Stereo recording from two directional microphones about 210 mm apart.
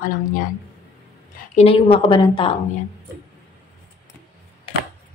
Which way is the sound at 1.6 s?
25° left (ahead or behind).